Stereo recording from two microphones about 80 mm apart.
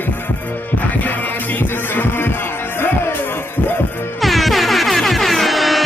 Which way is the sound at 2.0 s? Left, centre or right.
Left.